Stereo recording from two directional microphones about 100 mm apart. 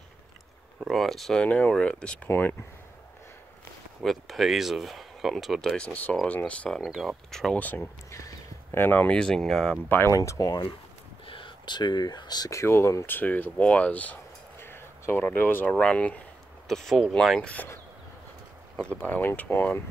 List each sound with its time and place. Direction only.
0.7 s speech: centre (ahead or behind)
2.2 s speech: 20° left (ahead or behind)
4.0 s speech: centre (ahead or behind)
6.8 s speech: centre (ahead or behind)
7.6 s speech: 20° left (ahead or behind)
8.7 s speech: 20° left (ahead or behind)
9.8 s speech: 20° left (ahead or behind)
10.1 s speech: 30° left (ahead or behind)
11.2 s speech: 55° left (ahead or behind)
12.4 s speech: 30° left (ahead or behind)
14.6 s a sound: 25° left (ahead or behind)
15.3 s speech: 20° left (ahead or behind)
18.9 s speech: 20° left (ahead or behind)